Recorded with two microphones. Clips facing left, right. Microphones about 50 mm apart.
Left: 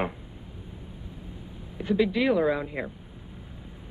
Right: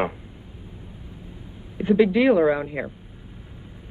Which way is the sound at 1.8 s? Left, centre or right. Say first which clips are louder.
Right 6 dB; right.